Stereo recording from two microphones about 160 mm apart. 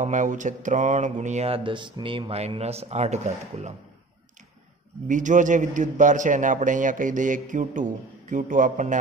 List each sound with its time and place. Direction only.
0.0 s a man's voice: 50° right (ahead or behind)
5.0 s a man's voice: 55° right (ahead or behind)